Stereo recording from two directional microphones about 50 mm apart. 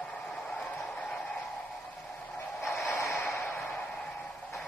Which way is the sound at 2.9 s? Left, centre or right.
Left.